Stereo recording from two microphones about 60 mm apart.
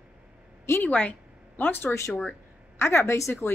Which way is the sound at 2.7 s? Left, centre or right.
Left.